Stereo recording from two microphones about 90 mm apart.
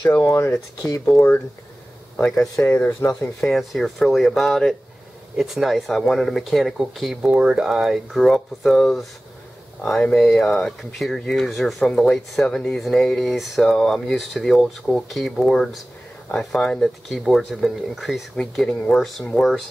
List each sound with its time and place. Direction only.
0.1 s speech: 35° left (ahead or behind)
2.2 s speech: 5° left (ahead or behind)
2.5 s speech: 20° left (ahead or behind)
3.3 s speech: 5° left (ahead or behind)